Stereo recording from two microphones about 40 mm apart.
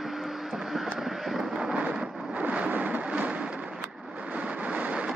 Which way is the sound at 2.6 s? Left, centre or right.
Right.